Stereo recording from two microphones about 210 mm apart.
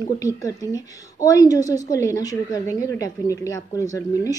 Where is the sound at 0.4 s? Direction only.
15° left (ahead or behind).